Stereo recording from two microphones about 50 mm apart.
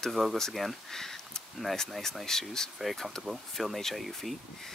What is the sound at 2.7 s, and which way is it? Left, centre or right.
Speech, centre.